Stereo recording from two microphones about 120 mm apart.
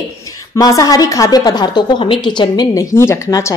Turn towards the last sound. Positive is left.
turn(degrees=25)  # may be behind; listen again after turning